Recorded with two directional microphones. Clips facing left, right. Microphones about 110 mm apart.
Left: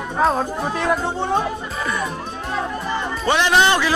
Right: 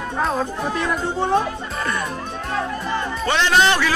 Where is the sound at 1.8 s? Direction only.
Centre (ahead or behind).